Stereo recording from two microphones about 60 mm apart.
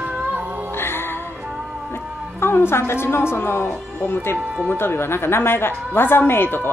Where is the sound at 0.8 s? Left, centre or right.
Left.